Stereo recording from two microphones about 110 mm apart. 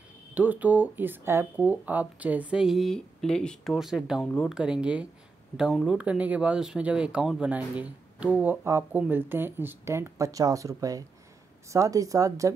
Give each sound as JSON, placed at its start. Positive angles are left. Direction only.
{"t": 0.3, "sound": "speech", "side_deg": -15}
{"t": 3.7, "sound": "speech", "side_deg": -5}